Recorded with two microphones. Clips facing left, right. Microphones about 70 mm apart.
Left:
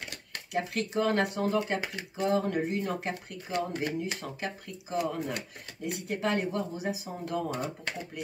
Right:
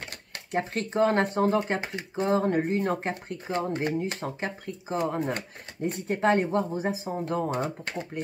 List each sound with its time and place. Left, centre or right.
0.5 s speech: right